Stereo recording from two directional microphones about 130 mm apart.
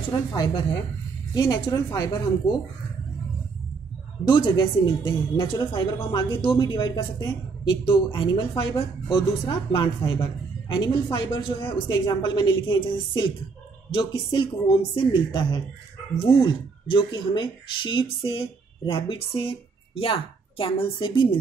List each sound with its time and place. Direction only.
0.1 s a woman's voice: 30° left (ahead or behind)
4.2 s speech: 35° left (ahead or behind)